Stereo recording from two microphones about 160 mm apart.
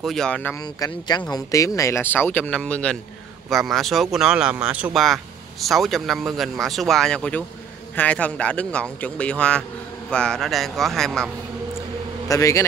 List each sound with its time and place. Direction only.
0.0 s speech: 5° left (ahead or behind)
0.6 s a man's voice: 25° left (ahead or behind); by 11.2 s centre (ahead or behind)
12.3 s speech: 20° left (ahead or behind)